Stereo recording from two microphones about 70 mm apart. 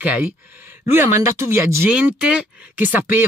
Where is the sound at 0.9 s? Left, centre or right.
Right.